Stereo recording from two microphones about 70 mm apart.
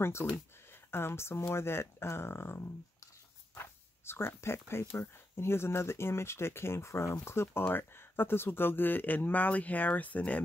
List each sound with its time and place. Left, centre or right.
0.0 s speech: left